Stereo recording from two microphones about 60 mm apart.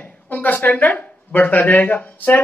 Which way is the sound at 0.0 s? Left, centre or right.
Left.